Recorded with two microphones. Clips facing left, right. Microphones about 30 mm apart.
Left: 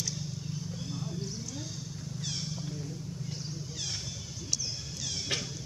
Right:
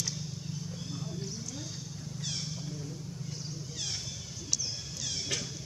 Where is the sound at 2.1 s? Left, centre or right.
Centre.